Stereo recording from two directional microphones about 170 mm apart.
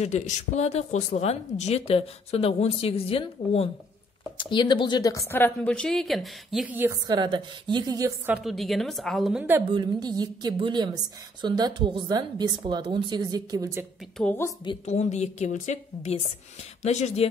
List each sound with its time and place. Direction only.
0.0 s a woman's voice: 40° left (ahead or behind); by 6.7 s centre (ahead or behind)
6.7 s a woman's voice: 10° right (ahead or behind)
7.1 s speech: 25° right (ahead or behind)
8.3 s a woman's voice: 5° right (ahead or behind)
9.7 s speech: 25° right (ahead or behind)
14.1 s a woman's voice: 5° left (ahead or behind)
14.9 s speech: 40° left (ahead or behind)